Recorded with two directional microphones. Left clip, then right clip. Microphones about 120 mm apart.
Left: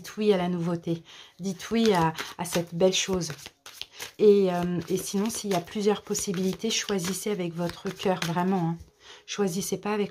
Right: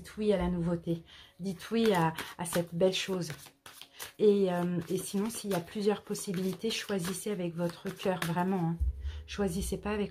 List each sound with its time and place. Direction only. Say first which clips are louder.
0.0 s speech: left 6 dB; 70° left (ahead or behind); by 0.9 s 50° left (ahead or behind)
1.4 s speech: left 4 dB; 35° left (ahead or behind)